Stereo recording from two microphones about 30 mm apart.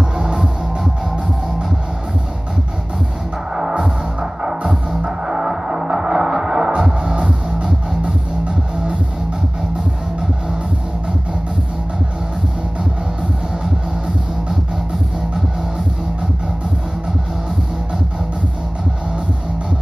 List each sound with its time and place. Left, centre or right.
0.2 s music: right
3.5 s music: right